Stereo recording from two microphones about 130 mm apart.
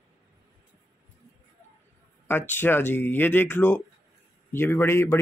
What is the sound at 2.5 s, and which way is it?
Speech, 15° left (ahead or behind).